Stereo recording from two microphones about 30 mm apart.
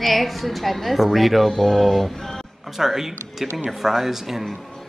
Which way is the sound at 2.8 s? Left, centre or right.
Centre.